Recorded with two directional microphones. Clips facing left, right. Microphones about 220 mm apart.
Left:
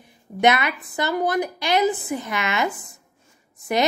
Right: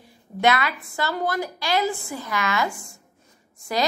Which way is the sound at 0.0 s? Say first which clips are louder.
Left 3 dB; 20° left (ahead or behind).